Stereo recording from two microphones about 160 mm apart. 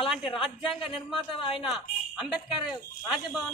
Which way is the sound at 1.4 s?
30° left (ahead or behind).